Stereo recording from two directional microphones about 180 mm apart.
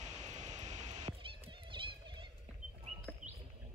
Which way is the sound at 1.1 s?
30° right (ahead or behind).